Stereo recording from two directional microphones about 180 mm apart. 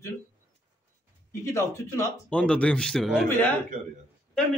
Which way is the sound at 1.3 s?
15° left (ahead or behind).